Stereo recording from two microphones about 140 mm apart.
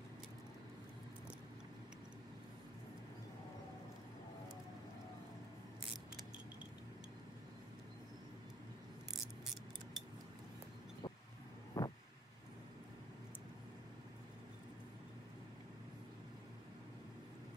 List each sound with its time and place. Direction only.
11.7 s vehicle: 20° left (ahead or behind)